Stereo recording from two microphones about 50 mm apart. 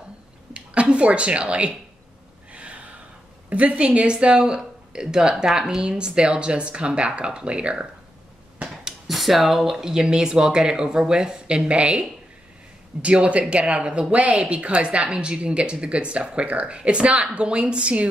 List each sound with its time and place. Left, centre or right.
0.5 s speech: right
2.5 s gasp: right
3.4 s speech: right
9.0 s speech: centre; by 18.0 s right